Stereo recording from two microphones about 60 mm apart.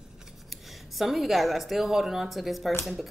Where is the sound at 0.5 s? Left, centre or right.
Centre.